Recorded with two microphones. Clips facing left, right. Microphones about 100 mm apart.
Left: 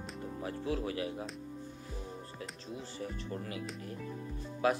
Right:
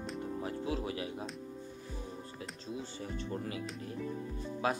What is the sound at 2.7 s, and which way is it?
Speech, 25° right (ahead or behind).